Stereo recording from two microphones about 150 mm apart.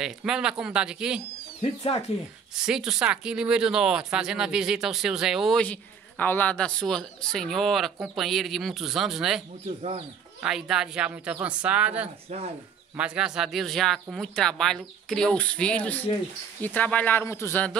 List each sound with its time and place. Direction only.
0.0 s speech: 5° right (ahead or behind)
1.6 s speech: 45° left (ahead or behind)
2.5 s speech: 5° right (ahead or behind)
9.8 s speech: 45° right (ahead or behind)
10.4 s speech: 5° right (ahead or behind); by 17.7 s 15° left (ahead or behind)